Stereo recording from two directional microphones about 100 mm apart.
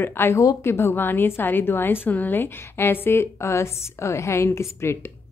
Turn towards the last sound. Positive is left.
turn(degrees=25)  # may be behind; listen again after turning